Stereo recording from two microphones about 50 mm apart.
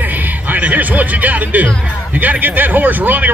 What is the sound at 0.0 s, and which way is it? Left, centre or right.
Speech, right.